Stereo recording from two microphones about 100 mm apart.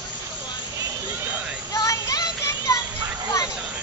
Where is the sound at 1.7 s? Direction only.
35° left (ahead or behind).